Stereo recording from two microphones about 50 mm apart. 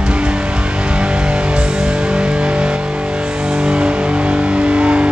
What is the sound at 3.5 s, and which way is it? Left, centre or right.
Vehicle, centre.